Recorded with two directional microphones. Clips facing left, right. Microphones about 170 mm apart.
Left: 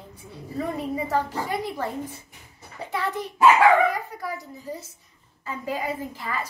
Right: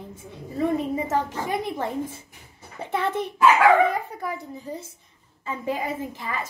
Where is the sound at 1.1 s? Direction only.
20° right (ahead or behind).